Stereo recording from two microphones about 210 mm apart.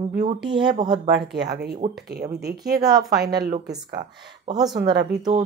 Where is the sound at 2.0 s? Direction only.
50° right (ahead or behind).